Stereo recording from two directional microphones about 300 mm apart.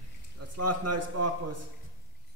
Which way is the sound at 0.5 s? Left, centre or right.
Right.